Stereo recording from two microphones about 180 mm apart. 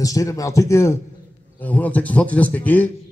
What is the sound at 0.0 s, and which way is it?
A man's voice, 20° left (ahead or behind).